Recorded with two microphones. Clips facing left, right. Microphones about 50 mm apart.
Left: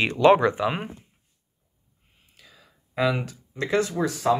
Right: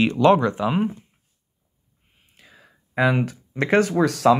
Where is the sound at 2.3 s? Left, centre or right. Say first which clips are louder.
Right 3 dB; right.